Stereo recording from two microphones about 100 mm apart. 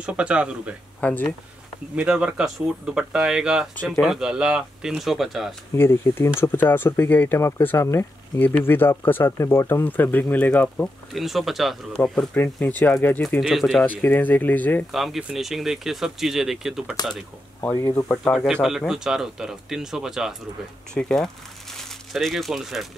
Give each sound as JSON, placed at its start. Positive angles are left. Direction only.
{"t": 0.0, "sound": "speech", "side_deg": -10}
{"t": 1.0, "sound": "speech", "side_deg": 20}
{"t": 2.0, "sound": "speech", "side_deg": -10}
{"t": 5.8, "sound": "speech", "side_deg": 25}
{"t": 8.4, "sound": "speech", "side_deg": 15}
{"t": 11.1, "sound": "speech", "side_deg": 0}
{"t": 12.0, "sound": "speech", "side_deg": 15}
{"t": 13.4, "sound": "speech", "side_deg": 0}
{"t": 13.8, "sound": "speech", "side_deg": 20}
{"t": 14.9, "sound": "speech", "side_deg": 0}
{"t": 17.7, "sound": "speech", "side_deg": 35}
{"t": 18.3, "sound": "speech", "side_deg": 5}
{"t": 20.9, "sound": "speech", "side_deg": 10}